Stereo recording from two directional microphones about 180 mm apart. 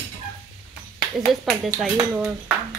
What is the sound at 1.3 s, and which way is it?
Speech, centre (ahead or behind).